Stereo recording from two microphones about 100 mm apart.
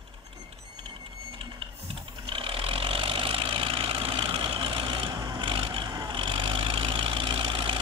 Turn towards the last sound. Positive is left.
turn(degrees=-60)  # may be behind; listen again after turning